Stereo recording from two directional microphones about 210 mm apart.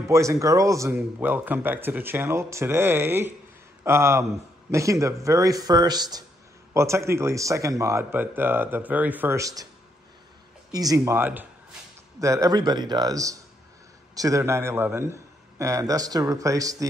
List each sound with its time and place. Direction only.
0.1 s a man's voice: 15° right (ahead or behind)
10.7 s a man's voice: 15° right (ahead or behind)